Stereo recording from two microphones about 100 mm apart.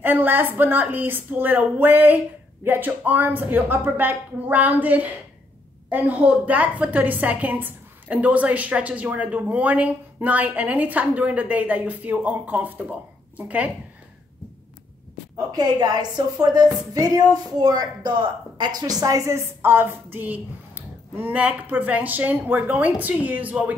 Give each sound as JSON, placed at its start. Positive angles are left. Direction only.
{"t": 0.0, "sound": "a woman's voice", "side_deg": -20}
{"t": 15.5, "sound": "a woman's voice", "side_deg": -45}